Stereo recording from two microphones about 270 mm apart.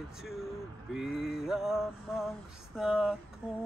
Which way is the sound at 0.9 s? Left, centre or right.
Centre.